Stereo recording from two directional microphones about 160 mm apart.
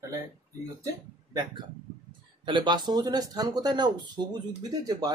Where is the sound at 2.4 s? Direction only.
30° right (ahead or behind).